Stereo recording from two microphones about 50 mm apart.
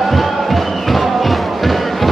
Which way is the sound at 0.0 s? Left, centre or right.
Centre.